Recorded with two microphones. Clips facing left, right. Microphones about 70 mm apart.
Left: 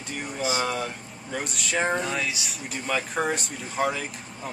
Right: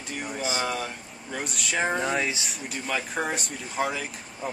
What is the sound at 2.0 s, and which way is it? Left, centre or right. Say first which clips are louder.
Speech: right 2 dB; right.